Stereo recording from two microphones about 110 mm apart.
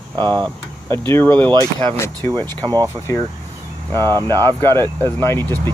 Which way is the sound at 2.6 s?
40° right (ahead or behind).